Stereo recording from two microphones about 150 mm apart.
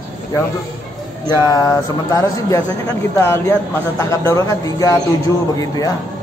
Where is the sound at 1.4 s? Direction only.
25° left (ahead or behind).